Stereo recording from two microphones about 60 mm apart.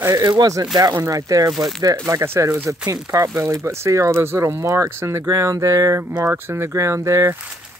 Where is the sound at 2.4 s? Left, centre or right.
Right.